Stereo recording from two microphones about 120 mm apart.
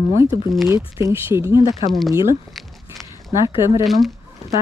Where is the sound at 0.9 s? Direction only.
20° right (ahead or behind).